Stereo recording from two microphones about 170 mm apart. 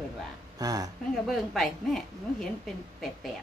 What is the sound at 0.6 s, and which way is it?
Speech, 20° right (ahead or behind).